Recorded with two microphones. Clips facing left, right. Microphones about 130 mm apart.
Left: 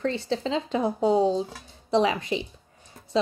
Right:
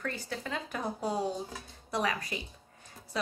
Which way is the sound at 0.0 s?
25° left (ahead or behind).